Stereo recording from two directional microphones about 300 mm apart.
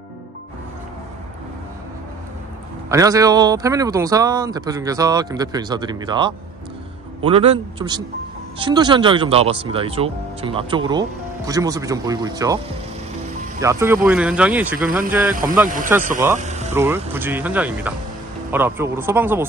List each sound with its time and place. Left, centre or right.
2.9 s speech: centre
13.6 s speech: centre
16.3 s a sound: right
16.7 s speech: centre